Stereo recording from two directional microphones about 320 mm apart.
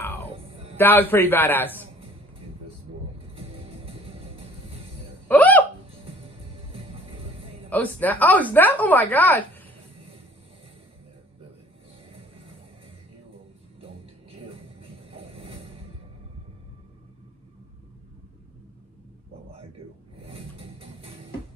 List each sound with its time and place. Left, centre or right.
0.0 s music: centre
0.7 s a man's voice: centre
3.3 s music: centre
5.3 s hiccup: centre
7.7 s a woman's voice: centre
14.4 s music: centre
20.2 s a sound: centre